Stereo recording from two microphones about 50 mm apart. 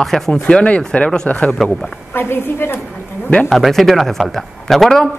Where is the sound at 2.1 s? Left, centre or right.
Left.